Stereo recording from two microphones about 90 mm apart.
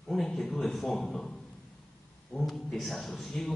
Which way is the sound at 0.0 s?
5° left (ahead or behind).